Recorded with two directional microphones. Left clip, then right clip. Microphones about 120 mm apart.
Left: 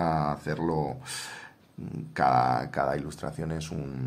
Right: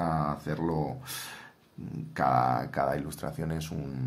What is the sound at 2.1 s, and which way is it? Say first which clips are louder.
Speech: left 2 dB; 25° left (ahead or behind).